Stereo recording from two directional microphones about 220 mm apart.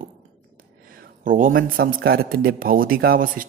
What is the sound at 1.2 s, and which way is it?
Speech, 40° right (ahead or behind).